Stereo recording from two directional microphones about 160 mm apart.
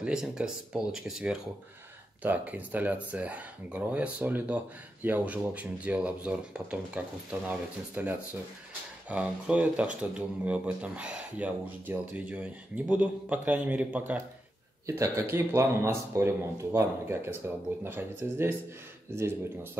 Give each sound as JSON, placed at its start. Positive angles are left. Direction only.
{"t": 0.0, "sound": "speech", "side_deg": -5}